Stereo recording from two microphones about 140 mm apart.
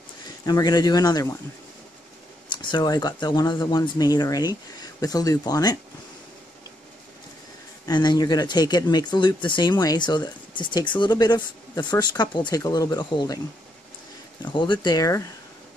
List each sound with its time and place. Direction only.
0.5 s speech: 30° left (ahead or behind)
2.5 s speech: 35° left (ahead or behind)
7.8 s speech: 30° left (ahead or behind)
14.4 s speech: 35° left (ahead or behind)